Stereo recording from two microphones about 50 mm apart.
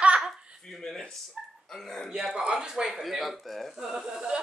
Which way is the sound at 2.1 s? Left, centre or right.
Centre.